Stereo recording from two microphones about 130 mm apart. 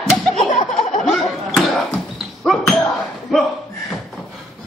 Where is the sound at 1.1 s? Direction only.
Centre (ahead or behind).